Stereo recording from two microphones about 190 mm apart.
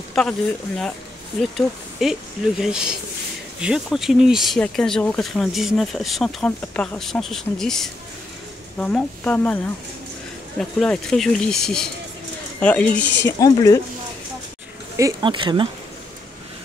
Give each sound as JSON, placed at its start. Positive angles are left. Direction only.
{"t": 0.1, "sound": "speech", "side_deg": 5}
{"t": 2.0, "sound": "speech", "side_deg": 0}
{"t": 10.6, "sound": "speech", "side_deg": 5}
{"t": 13.4, "sound": "speech", "side_deg": 20}
{"t": 15.0, "sound": "speech", "side_deg": -20}